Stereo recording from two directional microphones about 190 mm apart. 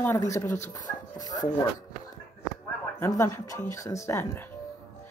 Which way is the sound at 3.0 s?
15° left (ahead or behind).